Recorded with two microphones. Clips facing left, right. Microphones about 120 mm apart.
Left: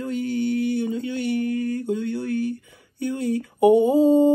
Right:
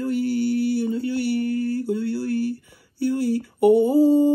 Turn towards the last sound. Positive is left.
turn(degrees=20)  # may be behind; listen again after turning